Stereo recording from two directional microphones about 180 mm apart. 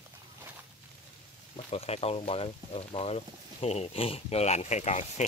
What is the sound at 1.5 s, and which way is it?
Speech, 35° left (ahead or behind).